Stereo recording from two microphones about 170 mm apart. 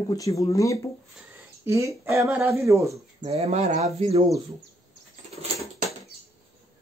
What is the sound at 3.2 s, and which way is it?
Speech, 35° right (ahead or behind).